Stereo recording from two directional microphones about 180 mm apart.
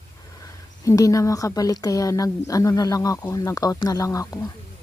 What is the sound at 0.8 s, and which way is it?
Speech, 15° left (ahead or behind).